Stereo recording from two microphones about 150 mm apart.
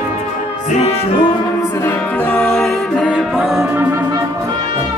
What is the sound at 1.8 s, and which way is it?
Brass instrument, 10° left (ahead or behind).